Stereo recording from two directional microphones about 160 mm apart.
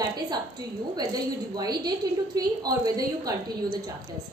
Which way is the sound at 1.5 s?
25° right (ahead or behind).